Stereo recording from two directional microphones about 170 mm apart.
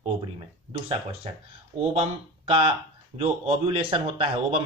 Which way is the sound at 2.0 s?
30° right (ahead or behind).